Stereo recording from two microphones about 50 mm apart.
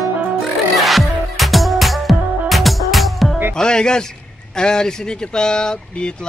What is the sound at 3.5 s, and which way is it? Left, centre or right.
A man's voice, centre.